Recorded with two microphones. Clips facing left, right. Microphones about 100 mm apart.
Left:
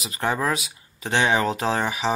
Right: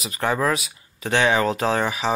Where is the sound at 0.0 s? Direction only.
25° left (ahead or behind).